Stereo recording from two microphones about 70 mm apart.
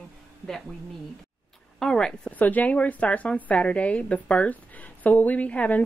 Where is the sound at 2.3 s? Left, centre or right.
Left.